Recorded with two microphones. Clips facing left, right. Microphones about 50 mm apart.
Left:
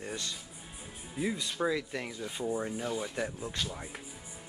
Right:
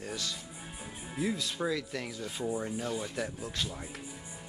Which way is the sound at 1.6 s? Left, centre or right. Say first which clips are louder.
Left 3 dB; centre.